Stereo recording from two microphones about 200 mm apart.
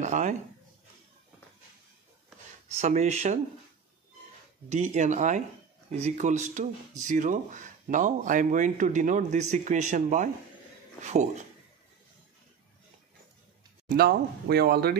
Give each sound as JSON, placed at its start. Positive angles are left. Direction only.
{"t": 0.0, "sound": "speech", "side_deg": -35}
{"t": 2.8, "sound": "speech", "side_deg": -35}
{"t": 4.6, "sound": "speech", "side_deg": -35}
{"t": 13.8, "sound": "speech", "side_deg": -50}